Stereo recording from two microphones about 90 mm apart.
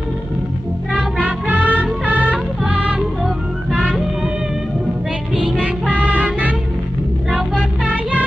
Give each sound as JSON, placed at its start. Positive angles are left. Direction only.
{"t": 1.1, "sound": "music", "side_deg": -15}
{"t": 5.6, "sound": "music", "side_deg": -15}